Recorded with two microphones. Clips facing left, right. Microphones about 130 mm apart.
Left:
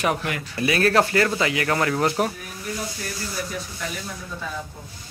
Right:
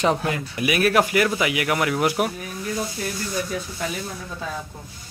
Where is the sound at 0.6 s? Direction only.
15° right (ahead or behind).